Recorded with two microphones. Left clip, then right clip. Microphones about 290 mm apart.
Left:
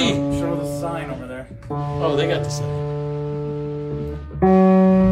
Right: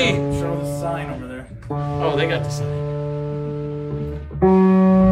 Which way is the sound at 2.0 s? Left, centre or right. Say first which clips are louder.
Left 1 dB; centre.